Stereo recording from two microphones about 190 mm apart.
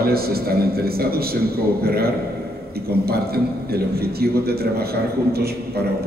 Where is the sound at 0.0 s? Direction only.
55° right (ahead or behind).